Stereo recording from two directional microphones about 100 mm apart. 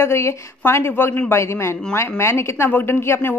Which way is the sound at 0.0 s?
25° left (ahead or behind).